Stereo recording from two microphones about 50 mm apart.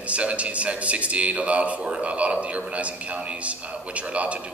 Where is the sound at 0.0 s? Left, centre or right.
Right.